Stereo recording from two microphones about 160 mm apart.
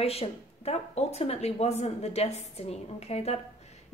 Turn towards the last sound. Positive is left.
turn(degrees=40)  # may be behind; listen again after turning